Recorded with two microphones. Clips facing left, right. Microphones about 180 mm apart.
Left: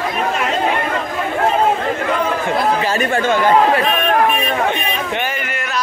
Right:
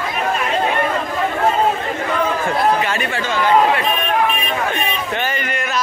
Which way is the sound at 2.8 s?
45° left (ahead or behind).